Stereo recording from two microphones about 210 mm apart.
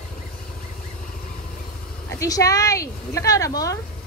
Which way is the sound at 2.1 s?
15° left (ahead or behind).